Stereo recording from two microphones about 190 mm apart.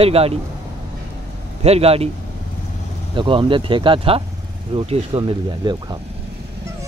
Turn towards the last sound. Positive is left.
turn(degrees=-25)  # may be behind; listen again after turning